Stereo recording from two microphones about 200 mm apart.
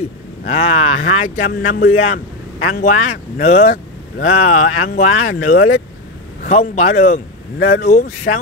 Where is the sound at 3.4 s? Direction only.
30° left (ahead or behind).